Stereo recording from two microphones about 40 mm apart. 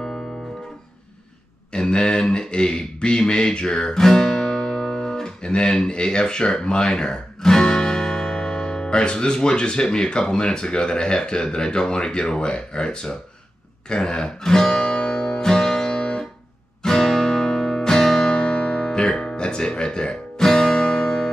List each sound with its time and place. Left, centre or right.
1.7 s speech: left
4.0 s guitar: centre
10.2 s speech: left
13.8 s music: left
16.8 s music: centre
18.3 s music: left